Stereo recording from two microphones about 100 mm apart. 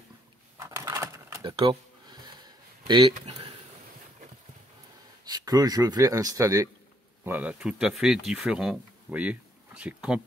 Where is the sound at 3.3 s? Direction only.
90° right.